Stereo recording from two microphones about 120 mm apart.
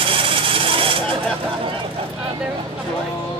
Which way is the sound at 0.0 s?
50° right (ahead or behind).